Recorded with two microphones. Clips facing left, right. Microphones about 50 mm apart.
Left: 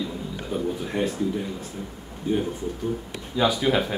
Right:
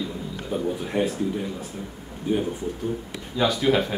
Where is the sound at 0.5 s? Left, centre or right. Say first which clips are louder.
Right 2 dB; centre.